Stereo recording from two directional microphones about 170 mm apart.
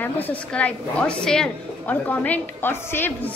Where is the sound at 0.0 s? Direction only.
10° left (ahead or behind).